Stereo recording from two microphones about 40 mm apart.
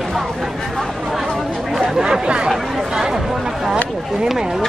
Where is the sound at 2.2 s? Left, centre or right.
Right.